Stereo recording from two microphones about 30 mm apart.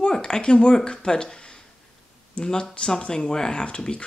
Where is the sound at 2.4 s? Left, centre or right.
Left.